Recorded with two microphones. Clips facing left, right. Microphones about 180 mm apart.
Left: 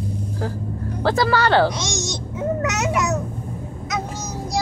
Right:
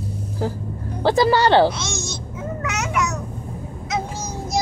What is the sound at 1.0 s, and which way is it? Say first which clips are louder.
Speech: right 3 dB; 20° right (ahead or behind).